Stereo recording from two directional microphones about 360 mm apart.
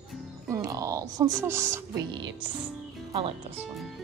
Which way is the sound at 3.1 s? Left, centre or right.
Centre.